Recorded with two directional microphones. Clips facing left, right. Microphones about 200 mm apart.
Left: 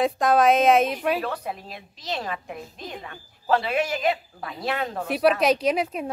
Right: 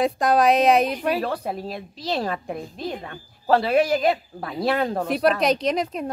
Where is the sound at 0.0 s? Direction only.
Centre (ahead or behind).